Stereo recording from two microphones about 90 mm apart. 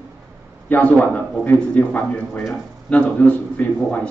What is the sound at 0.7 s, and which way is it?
Speech, 20° left (ahead or behind).